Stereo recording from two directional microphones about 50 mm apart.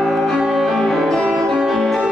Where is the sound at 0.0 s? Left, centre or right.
Centre.